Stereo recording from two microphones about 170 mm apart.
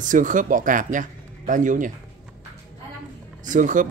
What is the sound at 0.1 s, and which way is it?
Speech, 50° right (ahead or behind).